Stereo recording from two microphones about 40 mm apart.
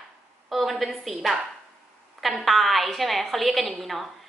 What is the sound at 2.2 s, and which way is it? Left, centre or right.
A woman's voice, centre.